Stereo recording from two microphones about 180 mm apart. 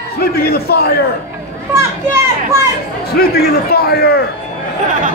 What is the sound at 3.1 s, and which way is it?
A man's voice, 60° left (ahead or behind).